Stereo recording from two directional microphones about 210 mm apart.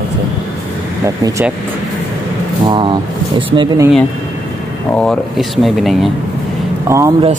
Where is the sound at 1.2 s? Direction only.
15° right (ahead or behind).